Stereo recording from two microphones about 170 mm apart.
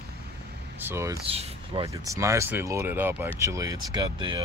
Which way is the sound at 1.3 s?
35° right (ahead or behind).